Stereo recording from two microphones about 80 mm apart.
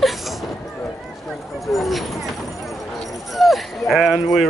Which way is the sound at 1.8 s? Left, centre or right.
Centre.